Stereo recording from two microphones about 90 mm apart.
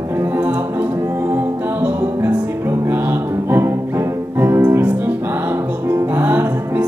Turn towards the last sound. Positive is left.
turn(degrees=-20)  # may be behind; listen again after turning